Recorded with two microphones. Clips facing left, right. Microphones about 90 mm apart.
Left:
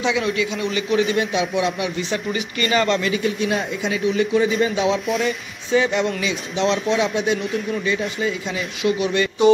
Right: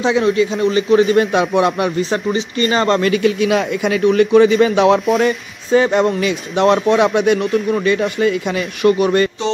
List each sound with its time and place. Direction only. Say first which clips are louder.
0.0 s a man's voice: right 7 dB; 35° right (ahead or behind)
1.1 s speech: right 7 dB; 50° right (ahead or behind)
2.0 s a man's voice: right 6 dB; 40° right (ahead or behind)
3.0 s a man's voice: right 7 dB; 70° right (ahead or behind)
5.2 s speech: right 7 dB; 45° right (ahead or behind)
6.2 s a man's voice: right 7 dB; 55° right (ahead or behind)